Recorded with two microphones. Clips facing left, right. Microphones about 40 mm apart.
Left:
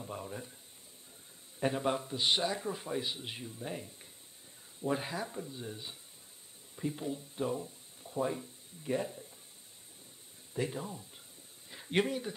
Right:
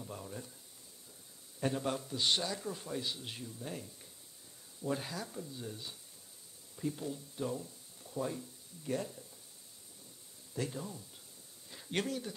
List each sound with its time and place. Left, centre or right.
0.0 s speech: left
1.6 s a man's voice: left
10.5 s a man's voice: left